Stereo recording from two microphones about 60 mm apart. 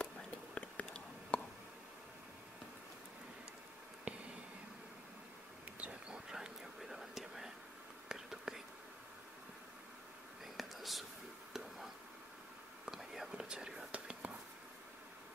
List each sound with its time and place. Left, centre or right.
0.0 s whispering: centre
0.8 s a sound: centre
4.1 s a sound: centre
5.8 s whispering: centre
10.4 s whispering: centre
12.8 s whispering: centre